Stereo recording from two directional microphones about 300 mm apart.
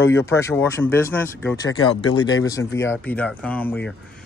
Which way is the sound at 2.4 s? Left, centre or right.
Centre.